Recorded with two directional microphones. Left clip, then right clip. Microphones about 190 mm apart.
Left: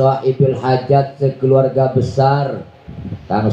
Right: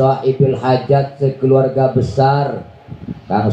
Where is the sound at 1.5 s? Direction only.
30° left (ahead or behind).